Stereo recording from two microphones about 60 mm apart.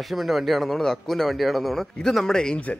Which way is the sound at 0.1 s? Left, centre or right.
Centre.